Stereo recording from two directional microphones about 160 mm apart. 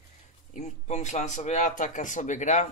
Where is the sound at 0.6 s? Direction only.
45° left (ahead or behind).